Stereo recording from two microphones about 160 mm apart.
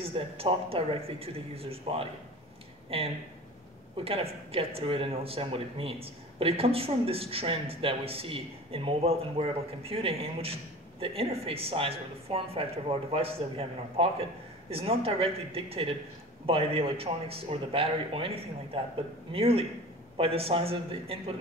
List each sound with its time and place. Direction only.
0.0 s speech: 35° right (ahead or behind)